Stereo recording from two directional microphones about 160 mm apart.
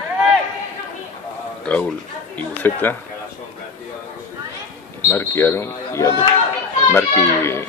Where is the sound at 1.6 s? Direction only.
5° left (ahead or behind).